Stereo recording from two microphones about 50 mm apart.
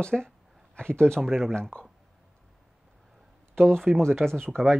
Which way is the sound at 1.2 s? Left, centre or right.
Centre.